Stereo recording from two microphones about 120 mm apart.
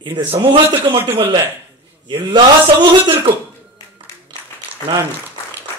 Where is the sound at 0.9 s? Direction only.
50° right (ahead or behind).